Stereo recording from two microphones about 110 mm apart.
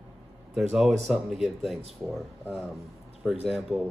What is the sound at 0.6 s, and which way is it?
Speech, 5° right (ahead or behind).